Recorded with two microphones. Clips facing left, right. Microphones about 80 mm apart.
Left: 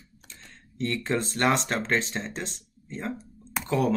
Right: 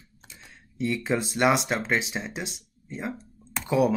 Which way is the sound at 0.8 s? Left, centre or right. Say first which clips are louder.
Right 1 dB; centre.